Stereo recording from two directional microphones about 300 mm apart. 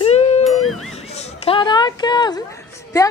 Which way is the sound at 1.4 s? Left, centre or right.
Centre.